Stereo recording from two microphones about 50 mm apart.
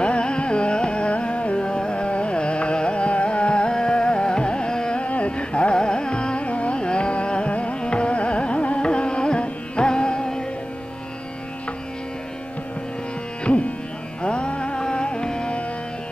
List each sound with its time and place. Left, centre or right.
0.0 s carnatic music: left
14.2 s music: left